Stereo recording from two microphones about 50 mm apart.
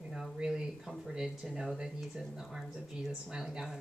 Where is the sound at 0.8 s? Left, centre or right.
Centre.